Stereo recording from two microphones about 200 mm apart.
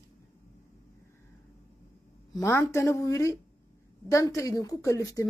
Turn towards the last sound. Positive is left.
turn(degrees=15)  # may be behind; listen again after turning